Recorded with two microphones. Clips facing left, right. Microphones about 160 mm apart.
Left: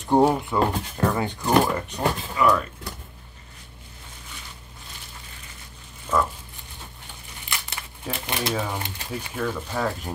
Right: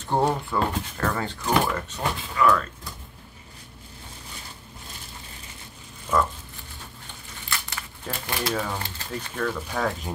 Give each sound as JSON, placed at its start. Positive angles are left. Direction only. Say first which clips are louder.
{"t": 0.0, "sound": "speech", "louder": "left 5 dB", "side_deg": 15}
{"t": 6.1, "sound": "a sound", "louder": "even", "side_deg": -10}
{"t": 7.4, "sound": "speech", "louder": "right 1 dB", "side_deg": 15}